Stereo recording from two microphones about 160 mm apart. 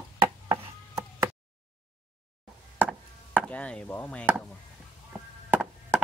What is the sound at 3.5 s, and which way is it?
Speech, 5° left (ahead or behind).